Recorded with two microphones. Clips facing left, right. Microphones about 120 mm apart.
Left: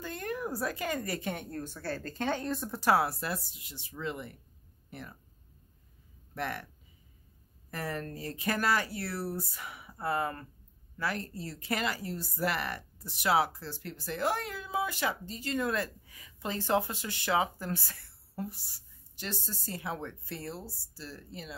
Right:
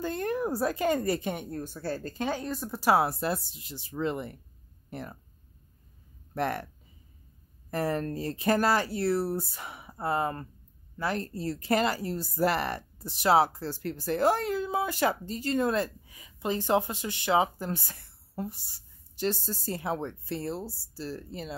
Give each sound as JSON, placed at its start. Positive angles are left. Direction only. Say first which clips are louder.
{"t": 0.0, "sound": "a woman's voice", "louder": "right 6 dB", "side_deg": -35}
{"t": 3.0, "sound": "speech", "louder": "right 4 dB", "side_deg": -25}
{"t": 6.3, "sound": "speech", "louder": "right 6 dB", "side_deg": -40}
{"t": 7.7, "sound": "speech", "louder": "right 8 dB", "side_deg": -35}
{"t": 19.1, "sound": "speech", "louder": "right 10 dB", "side_deg": -35}